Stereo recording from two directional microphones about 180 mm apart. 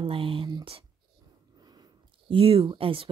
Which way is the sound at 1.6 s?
20° right (ahead or behind).